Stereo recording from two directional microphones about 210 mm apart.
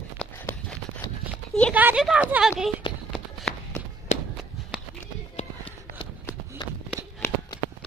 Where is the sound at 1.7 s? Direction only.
10° right (ahead or behind).